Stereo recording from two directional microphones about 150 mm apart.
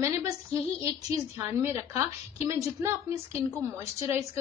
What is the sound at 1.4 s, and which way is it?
A woman's voice, 20° right (ahead or behind).